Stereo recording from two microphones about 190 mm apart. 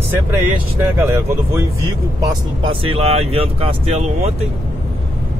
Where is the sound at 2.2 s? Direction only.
25° right (ahead or behind).